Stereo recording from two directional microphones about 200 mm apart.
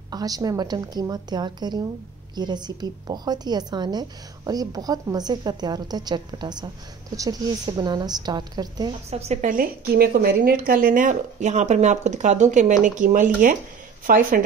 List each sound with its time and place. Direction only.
0.1 s a woman's voice: 20° right (ahead or behind)
9.1 s a woman's voice: 30° right (ahead or behind)